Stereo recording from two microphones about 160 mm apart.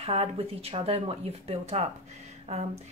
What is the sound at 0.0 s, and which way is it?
A woman's voice, 40° right (ahead or behind).